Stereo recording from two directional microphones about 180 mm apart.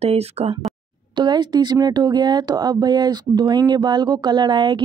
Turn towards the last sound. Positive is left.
turn(degrees=-25)  # may be behind; listen again after turning